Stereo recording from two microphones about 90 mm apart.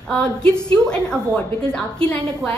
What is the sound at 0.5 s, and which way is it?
A woman's voice, 10° left (ahead or behind).